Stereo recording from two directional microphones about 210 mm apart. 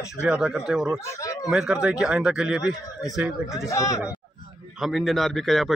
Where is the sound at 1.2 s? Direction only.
15° left (ahead or behind).